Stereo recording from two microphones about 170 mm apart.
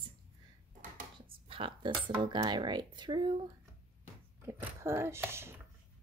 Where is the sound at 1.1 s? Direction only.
30° right (ahead or behind).